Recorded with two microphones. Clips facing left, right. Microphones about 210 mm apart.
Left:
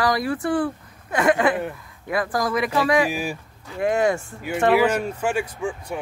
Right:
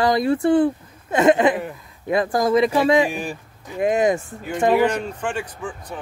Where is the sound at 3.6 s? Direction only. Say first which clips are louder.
Right 2 dB; 20° right (ahead or behind).